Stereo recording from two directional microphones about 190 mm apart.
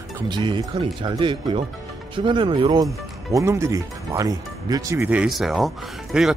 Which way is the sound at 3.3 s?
15° right (ahead or behind).